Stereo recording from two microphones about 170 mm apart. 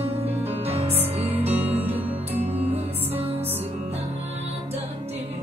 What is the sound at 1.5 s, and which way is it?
Music, 10° right (ahead or behind).